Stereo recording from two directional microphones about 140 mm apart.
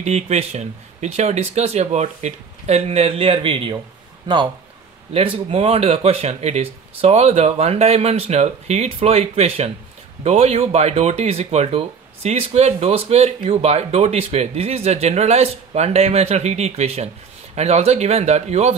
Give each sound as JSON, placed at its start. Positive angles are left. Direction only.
{"t": 0.0, "sound": "speech", "side_deg": -50}
{"t": 5.1, "sound": "speech", "side_deg": -40}